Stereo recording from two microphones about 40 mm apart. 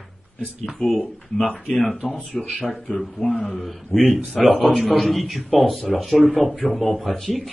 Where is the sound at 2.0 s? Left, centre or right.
Centre.